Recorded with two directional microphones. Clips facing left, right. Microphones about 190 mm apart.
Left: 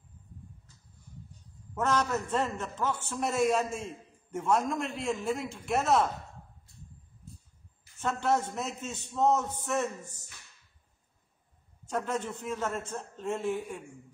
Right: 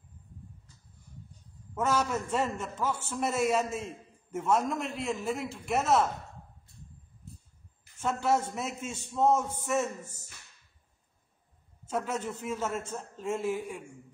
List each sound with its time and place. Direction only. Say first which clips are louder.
1.8 s a man's voice: even; 10° right (ahead or behind)
8.0 s a man's voice: right 1 dB; 10° right (ahead or behind)
11.9 s a man's voice: even; 5° right (ahead or behind)